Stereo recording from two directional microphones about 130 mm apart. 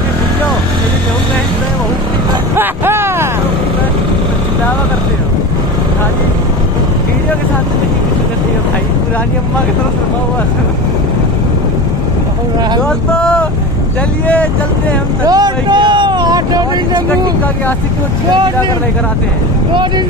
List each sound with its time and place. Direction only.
2.5 s vehicle: 15° right (ahead or behind)
12.8 s vehicle: 5° left (ahead or behind)
15.2 s vehicle: 30° right (ahead or behind)